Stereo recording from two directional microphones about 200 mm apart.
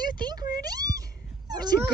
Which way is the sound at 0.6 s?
20° right (ahead or behind).